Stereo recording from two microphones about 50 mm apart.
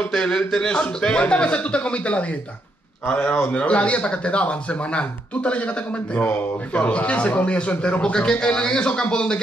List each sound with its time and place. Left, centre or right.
0.1 s speech: centre